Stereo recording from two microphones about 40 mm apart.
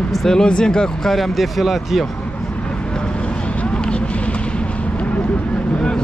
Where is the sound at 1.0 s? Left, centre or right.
Centre.